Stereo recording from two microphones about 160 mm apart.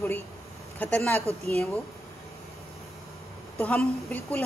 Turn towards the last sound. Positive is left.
turn(degrees=10)  # may be behind; listen again after turning